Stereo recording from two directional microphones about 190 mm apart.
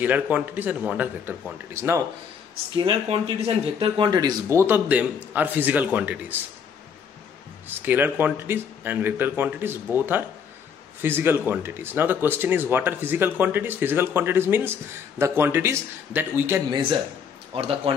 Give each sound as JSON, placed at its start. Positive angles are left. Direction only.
{"t": 0.0, "sound": "speech", "side_deg": -10}
{"t": 2.7, "sound": "speech", "side_deg": -25}
{"t": 7.6, "sound": "speech", "side_deg": -10}
{"t": 17.6, "sound": "speech", "side_deg": -30}